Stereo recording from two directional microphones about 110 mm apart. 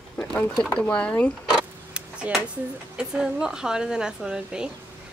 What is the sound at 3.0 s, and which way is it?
Speech, 5° right (ahead or behind).